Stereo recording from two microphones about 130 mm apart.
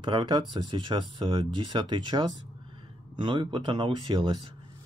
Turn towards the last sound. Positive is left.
turn(degrees=-35)  # may be behind; listen again after turning